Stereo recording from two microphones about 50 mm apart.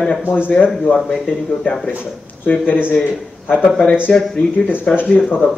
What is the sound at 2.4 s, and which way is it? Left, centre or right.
Speech, left.